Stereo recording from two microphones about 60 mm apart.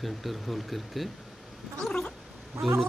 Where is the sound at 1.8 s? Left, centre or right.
Centre.